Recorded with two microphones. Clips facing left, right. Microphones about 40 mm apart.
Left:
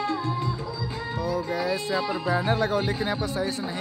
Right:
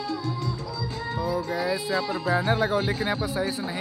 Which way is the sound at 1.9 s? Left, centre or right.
Centre.